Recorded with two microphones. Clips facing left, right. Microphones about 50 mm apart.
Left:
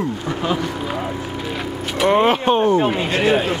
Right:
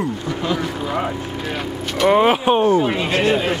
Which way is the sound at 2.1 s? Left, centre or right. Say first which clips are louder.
Right 1 dB; centre.